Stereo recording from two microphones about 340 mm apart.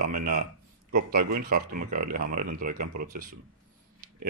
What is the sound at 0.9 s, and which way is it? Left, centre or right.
Speech, right.